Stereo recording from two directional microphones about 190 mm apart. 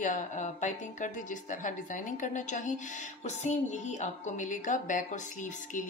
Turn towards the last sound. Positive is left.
turn(degrees=40)  # may be behind; listen again after turning